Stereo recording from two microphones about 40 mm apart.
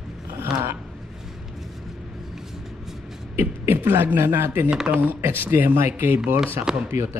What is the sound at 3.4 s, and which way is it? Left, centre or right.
Beatboxing, right.